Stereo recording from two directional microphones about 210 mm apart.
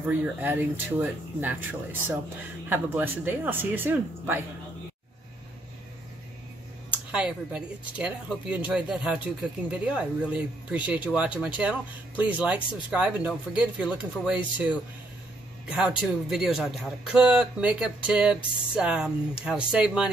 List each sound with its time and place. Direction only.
0.2 s speech: 10° right (ahead or behind)
6.9 s speech: 5° right (ahead or behind)